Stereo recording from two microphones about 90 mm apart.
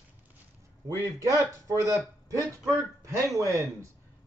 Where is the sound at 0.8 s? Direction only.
35° right (ahead or behind).